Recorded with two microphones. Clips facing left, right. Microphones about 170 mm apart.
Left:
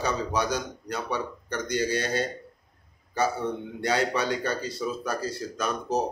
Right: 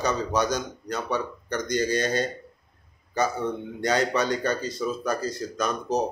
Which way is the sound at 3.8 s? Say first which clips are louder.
Right 2 dB; 10° left (ahead or behind).